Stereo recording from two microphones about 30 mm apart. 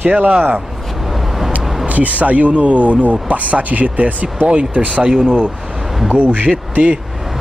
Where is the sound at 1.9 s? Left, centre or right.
Right.